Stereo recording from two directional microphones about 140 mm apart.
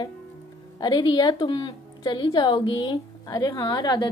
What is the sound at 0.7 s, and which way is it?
A woman's voice, 30° left (ahead or behind).